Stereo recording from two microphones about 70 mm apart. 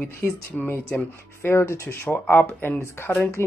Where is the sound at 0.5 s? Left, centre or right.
Left.